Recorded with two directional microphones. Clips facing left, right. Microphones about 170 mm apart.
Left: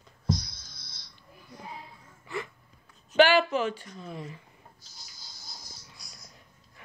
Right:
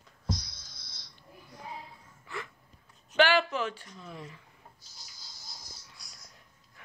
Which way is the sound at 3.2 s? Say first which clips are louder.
Left 4 dB; 10° left (ahead or behind).